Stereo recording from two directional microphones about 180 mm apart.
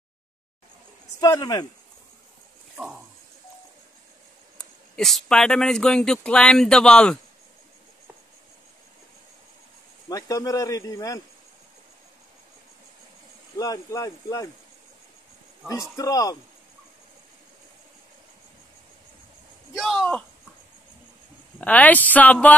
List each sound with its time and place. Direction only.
1.2 s speech: 20° left (ahead or behind)
4.6 s speech: centre (ahead or behind)
10.0 s speech: 20° left (ahead or behind)
13.6 s speech: 20° left (ahead or behind)
15.7 s speech: 20° left (ahead or behind)
19.7 s speech: centre (ahead or behind)
21.5 s speech: 10° left (ahead or behind)